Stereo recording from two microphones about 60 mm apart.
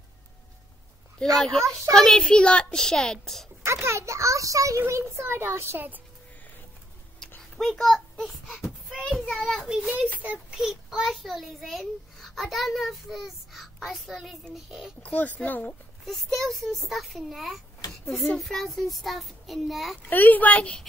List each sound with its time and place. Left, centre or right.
1.3 s a child's voice: centre
3.6 s a child's voice: right
5.2 s speech: right
7.2 s a sound: centre
9.3 s a child's voice: centre
10.1 s a child's voice: right
10.5 s a child's voice: centre
15.0 s a child's voice: left
16.1 s a child's voice: centre
20.0 s a child's voice: left